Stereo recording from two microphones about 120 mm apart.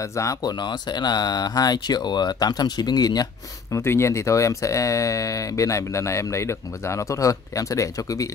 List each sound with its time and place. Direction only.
0.0 s speech: 25° left (ahead or behind)
3.7 s speech: 25° left (ahead or behind)